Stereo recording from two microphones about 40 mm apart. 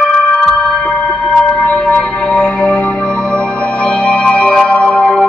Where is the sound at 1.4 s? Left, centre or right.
Left.